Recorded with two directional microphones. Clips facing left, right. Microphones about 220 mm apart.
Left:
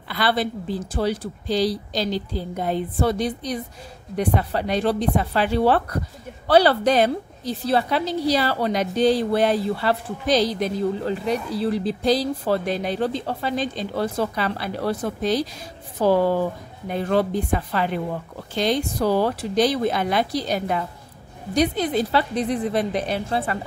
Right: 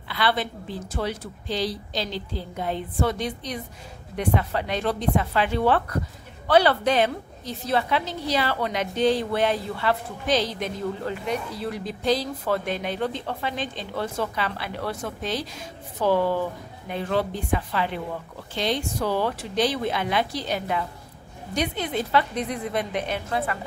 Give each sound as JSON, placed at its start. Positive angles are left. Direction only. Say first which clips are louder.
{"t": 0.1, "sound": "a woman's voice", "louder": "left 3 dB", "side_deg": 40}